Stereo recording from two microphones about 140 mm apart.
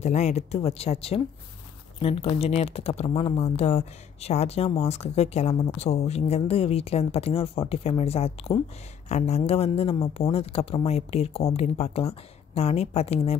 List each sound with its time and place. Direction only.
0.0 s speech: 55° left (ahead or behind)